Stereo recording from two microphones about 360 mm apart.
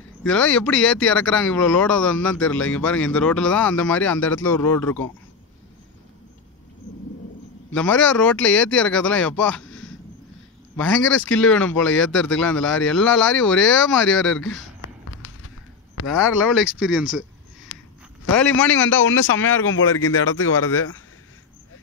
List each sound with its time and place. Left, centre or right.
0.2 s speech: centre
7.7 s speech: centre
11.3 s speech: centre
15.0 s a sound: left
16.8 s speech: centre
17.7 s a sound: left
18.3 s speech: left